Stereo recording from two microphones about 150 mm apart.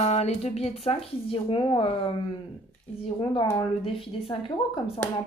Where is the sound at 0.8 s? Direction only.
40° left (ahead or behind).